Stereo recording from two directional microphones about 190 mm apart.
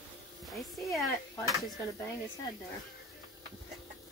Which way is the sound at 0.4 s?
Centre (ahead or behind).